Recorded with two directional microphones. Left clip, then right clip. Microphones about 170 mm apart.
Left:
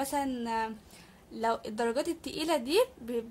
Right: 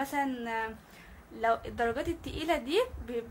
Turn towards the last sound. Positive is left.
turn(degrees=40)  # may be behind; listen again after turning